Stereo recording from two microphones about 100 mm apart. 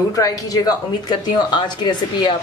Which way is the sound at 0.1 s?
35° left (ahead or behind).